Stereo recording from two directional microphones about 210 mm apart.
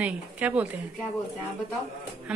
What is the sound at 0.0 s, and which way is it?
Speech, 5° right (ahead or behind).